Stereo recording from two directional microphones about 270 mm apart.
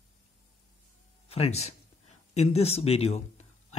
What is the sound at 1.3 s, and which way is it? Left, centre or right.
Speech, left.